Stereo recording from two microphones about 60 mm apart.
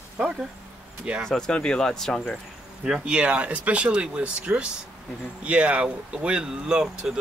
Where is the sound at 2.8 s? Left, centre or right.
Centre.